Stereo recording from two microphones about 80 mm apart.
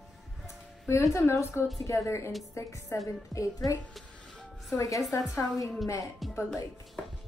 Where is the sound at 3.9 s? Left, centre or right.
Centre.